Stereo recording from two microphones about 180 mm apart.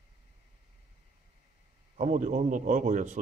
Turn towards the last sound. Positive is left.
turn(degrees=-40)  # may be behind; listen again after turning